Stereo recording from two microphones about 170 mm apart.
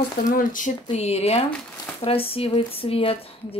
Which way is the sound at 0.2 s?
50° left (ahead or behind).